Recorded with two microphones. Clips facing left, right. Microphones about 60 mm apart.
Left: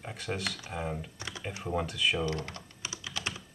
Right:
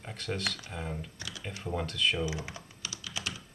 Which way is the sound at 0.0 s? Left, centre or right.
Centre.